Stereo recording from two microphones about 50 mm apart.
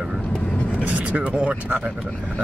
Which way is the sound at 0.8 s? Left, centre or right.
Right.